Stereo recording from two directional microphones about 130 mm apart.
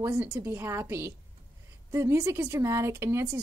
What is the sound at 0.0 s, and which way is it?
Speech, 20° right (ahead or behind).